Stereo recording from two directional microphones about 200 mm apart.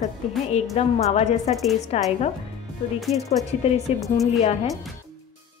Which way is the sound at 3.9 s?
30° left (ahead or behind).